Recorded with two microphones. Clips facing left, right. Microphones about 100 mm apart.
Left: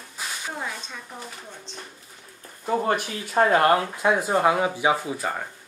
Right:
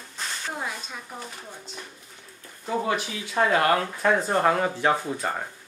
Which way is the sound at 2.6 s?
45° left (ahead or behind).